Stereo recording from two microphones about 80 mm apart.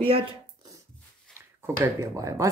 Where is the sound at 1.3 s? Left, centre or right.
Centre.